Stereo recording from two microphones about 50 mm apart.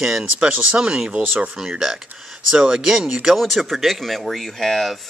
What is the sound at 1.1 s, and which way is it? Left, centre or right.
Speech, right.